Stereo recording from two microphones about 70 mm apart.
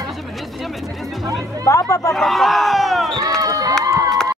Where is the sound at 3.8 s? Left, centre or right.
Right.